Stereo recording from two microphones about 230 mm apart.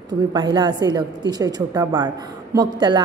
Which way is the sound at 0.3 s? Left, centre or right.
Centre.